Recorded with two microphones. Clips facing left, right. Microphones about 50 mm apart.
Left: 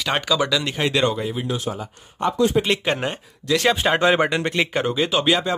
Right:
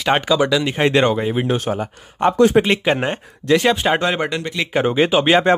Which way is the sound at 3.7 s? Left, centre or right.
Centre.